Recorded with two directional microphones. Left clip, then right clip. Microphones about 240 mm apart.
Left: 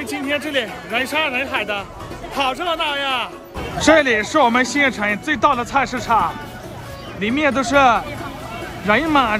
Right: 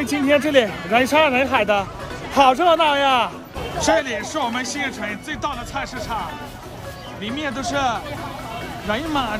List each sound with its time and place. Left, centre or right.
0.0 s speech: centre
3.8 s speech: centre
7.2 s speech: right
7.5 s speech: centre